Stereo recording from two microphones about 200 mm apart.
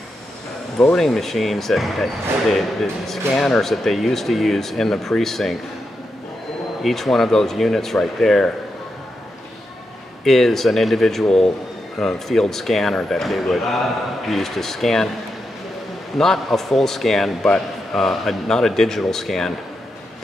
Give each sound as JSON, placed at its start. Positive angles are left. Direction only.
{"t": 0.7, "sound": "a man's voice", "side_deg": 0}
{"t": 6.8, "sound": "a man's voice", "side_deg": 0}
{"t": 10.2, "sound": "a man's voice", "side_deg": 0}
{"t": 16.2, "sound": "a man's voice", "side_deg": 0}